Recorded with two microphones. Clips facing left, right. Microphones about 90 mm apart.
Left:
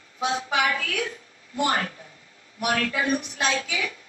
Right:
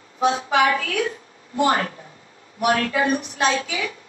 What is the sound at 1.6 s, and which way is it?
A woman's voice, 35° right (ahead or behind).